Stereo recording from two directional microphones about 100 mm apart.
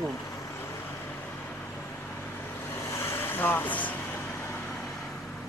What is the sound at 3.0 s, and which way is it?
Vehicle, 20° left (ahead or behind).